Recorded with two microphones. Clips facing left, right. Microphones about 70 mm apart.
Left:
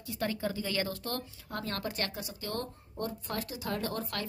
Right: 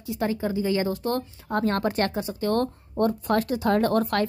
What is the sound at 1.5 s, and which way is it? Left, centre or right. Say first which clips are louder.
Speech: right 13 dB; right.